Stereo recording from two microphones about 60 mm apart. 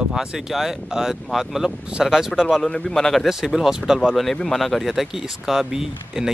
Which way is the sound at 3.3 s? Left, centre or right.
Centre.